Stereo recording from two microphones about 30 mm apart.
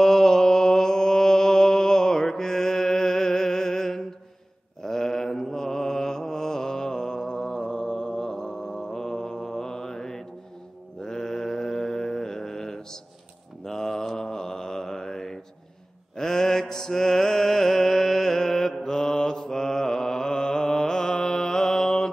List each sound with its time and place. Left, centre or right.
0.0 s mantra: centre